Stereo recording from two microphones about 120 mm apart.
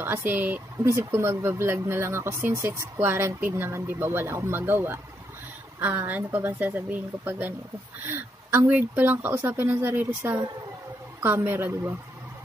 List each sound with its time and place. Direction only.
0.0 s speech: 15° right (ahead or behind)